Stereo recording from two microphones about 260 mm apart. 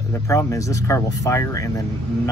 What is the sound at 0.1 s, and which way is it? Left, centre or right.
Speech, centre.